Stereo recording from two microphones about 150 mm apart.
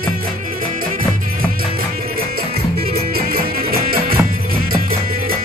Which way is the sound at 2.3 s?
90° right.